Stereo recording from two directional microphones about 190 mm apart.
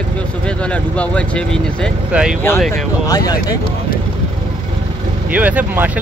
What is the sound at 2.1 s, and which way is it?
Speech, 5° right (ahead or behind).